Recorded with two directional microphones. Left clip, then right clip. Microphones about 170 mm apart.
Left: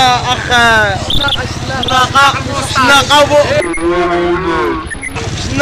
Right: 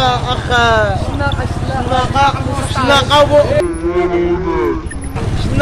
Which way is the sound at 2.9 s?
25° left (ahead or behind).